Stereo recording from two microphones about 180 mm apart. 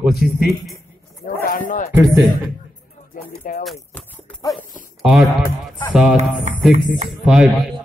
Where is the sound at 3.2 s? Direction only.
50° left (ahead or behind).